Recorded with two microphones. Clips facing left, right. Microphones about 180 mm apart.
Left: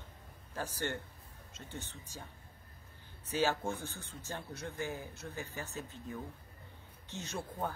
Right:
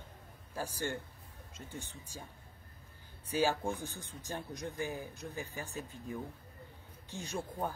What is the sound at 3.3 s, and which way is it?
Speech, 15° right (ahead or behind).